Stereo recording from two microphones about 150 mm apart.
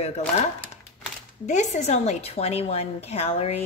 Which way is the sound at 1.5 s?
50° left (ahead or behind).